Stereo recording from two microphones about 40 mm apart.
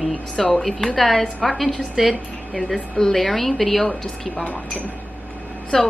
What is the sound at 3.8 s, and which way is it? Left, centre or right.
Speech, centre.